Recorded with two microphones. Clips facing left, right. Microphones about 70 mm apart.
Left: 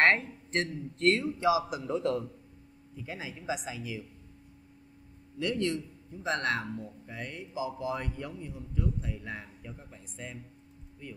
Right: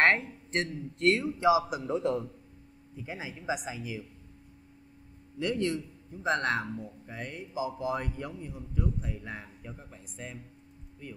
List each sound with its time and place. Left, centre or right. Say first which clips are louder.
0.0 s a man's voice: even; centre
5.4 s speech: right 1 dB; centre